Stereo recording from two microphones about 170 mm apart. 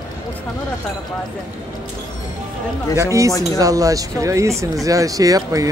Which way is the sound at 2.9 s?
20° right (ahead or behind).